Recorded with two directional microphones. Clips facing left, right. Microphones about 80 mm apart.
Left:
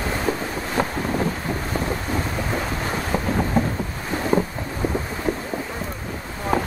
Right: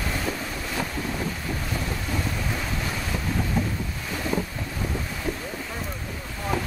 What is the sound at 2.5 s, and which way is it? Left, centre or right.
Boat, left.